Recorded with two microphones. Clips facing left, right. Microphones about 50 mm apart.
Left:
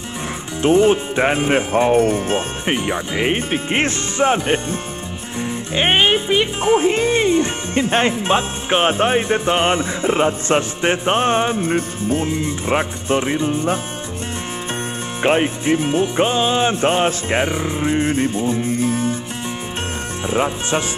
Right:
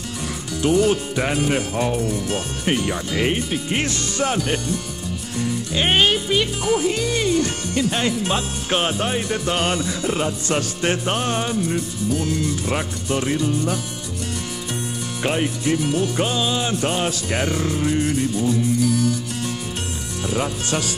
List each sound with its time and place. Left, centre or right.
0.6 s speech: left
3.3 s music: left
12.3 s speech: left
15.2 s music: left
20.2 s speech: left